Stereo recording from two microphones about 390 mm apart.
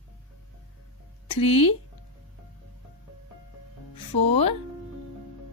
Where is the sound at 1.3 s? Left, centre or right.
Centre.